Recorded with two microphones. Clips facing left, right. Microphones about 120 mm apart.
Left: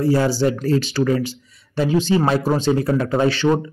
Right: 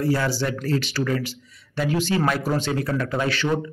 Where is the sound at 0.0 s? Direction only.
25° left (ahead or behind).